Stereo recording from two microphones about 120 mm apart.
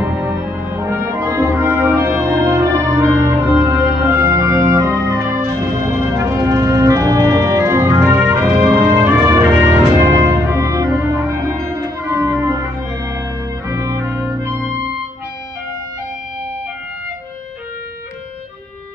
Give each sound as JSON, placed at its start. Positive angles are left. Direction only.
{"t": 0.2, "sound": "brass instrument", "side_deg": -10}
{"t": 0.7, "sound": "music", "side_deg": -25}
{"t": 2.3, "sound": "music", "side_deg": -25}